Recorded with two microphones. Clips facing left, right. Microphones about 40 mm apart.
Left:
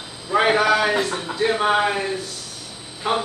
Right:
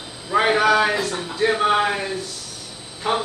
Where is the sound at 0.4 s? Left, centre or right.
Centre.